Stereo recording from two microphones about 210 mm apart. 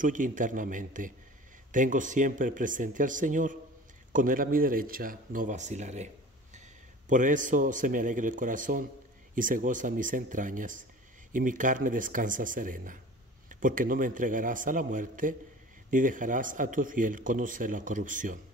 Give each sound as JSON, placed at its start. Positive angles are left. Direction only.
{"t": 0.0, "sound": "speech", "side_deg": -40}
{"t": 7.1, "sound": "speech", "side_deg": -40}